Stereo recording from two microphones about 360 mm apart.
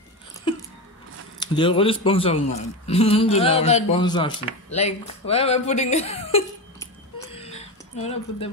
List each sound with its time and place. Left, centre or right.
1.4 s a man's voice: centre